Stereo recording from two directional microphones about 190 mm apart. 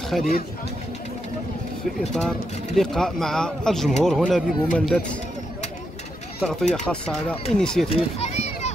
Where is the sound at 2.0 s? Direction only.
Centre (ahead or behind).